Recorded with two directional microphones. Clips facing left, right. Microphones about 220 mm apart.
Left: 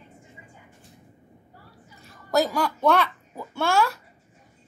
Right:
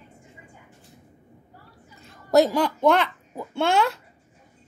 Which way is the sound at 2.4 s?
20° right (ahead or behind).